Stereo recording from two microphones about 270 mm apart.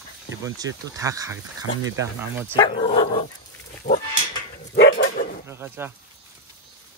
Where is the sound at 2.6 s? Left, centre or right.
Centre.